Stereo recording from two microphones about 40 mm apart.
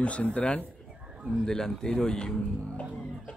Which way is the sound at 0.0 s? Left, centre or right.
Left.